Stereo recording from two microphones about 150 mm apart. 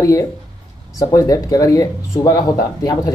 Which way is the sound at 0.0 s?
20° left (ahead or behind).